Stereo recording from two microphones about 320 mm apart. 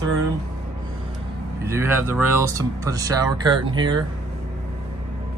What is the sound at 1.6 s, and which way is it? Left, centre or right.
Speech, centre.